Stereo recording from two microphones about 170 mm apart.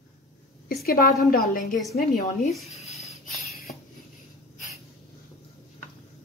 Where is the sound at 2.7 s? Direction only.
40° left (ahead or behind).